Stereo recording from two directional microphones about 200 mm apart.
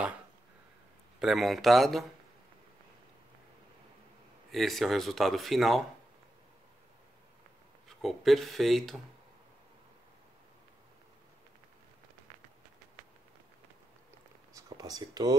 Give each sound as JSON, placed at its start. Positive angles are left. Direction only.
{"t": 1.2, "sound": "speech", "side_deg": 0}
{"t": 4.5, "sound": "speech", "side_deg": 0}
{"t": 8.0, "sound": "speech", "side_deg": 0}
{"t": 14.5, "sound": "a sound", "side_deg": -20}